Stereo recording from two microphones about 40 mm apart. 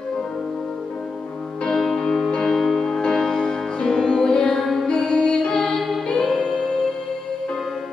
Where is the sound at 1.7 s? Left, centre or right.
Centre.